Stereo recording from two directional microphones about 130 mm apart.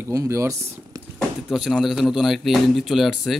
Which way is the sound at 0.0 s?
25° right (ahead or behind).